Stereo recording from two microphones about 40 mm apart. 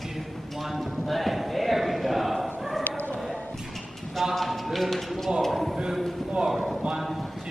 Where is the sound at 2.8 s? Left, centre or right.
Left.